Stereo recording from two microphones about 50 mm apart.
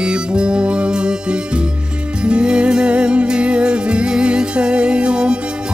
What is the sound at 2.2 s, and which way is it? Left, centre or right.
Music, centre.